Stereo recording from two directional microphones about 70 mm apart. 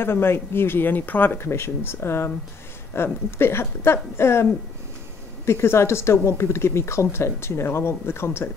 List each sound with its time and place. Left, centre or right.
0.0 s speech: left